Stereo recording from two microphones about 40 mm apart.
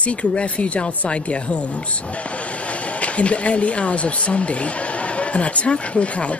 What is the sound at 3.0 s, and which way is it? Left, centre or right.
Speech, left.